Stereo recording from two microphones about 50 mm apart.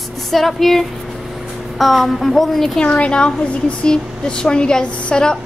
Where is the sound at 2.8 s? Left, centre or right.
Left.